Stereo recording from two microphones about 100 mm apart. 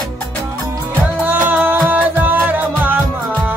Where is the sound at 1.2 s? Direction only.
20° right (ahead or behind).